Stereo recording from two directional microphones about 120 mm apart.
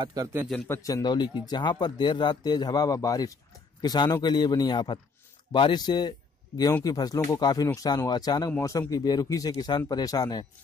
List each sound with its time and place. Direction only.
0.1 s a man's voice: 30° right (ahead or behind)
0.7 s speech: 30° left (ahead or behind)
8.5 s speech: 25° left (ahead or behind)